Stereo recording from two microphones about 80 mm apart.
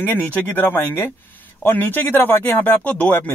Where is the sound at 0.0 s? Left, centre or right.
Left.